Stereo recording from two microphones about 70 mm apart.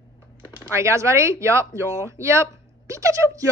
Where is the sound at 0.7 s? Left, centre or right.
Right.